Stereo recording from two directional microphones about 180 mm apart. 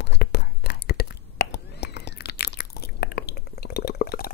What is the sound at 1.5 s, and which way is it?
Chewing, 70° left (ahead or behind).